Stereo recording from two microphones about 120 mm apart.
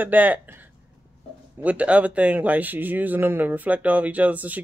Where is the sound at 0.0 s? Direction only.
15° right (ahead or behind).